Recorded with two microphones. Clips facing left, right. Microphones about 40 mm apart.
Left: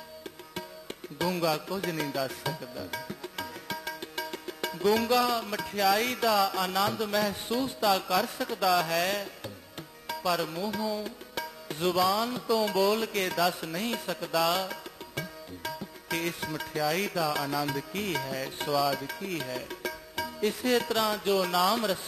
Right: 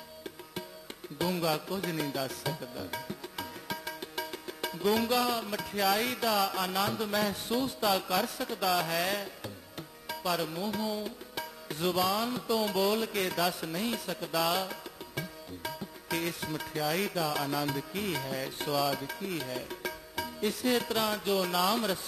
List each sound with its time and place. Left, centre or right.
1.1 s music: centre
1.8 s music: centre
2.6 s music: centre
2.9 s music: centre
16.4 s music: centre
18.7 s music: centre
19.0 s music: centre
19.3 s speech: centre
20.4 s music: centre